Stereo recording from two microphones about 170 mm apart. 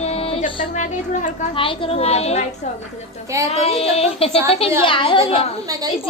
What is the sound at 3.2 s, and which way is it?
Speech, 20° right (ahead or behind).